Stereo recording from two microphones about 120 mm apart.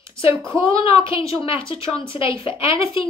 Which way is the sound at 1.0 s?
50° left (ahead or behind).